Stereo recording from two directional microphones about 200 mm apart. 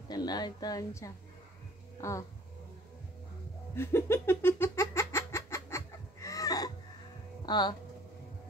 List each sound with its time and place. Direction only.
0.1 s a woman's voice: 20° left (ahead or behind)
3.7 s a sound: 10° left (ahead or behind)
7.4 s speech: 20° left (ahead or behind)